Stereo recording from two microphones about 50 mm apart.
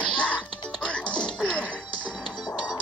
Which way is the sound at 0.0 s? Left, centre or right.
Centre.